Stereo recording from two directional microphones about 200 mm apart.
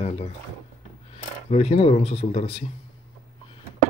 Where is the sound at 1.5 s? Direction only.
30° left (ahead or behind).